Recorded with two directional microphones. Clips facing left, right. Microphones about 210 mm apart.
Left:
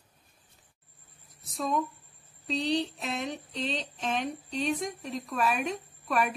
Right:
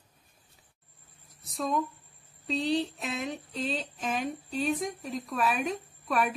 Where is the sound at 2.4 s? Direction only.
Centre (ahead or behind).